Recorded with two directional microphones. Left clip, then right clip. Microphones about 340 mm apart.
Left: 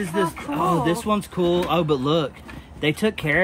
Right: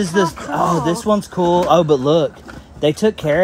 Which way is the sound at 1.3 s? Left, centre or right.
Centre.